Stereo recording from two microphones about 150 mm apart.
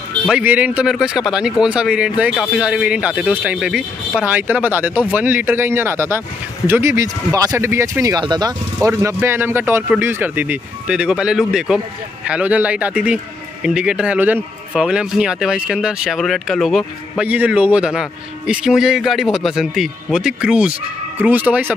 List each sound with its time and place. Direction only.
0.3 s a man's voice: 10° right (ahead or behind)